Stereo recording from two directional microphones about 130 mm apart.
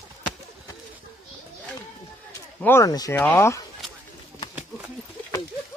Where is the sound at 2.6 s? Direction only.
20° left (ahead or behind).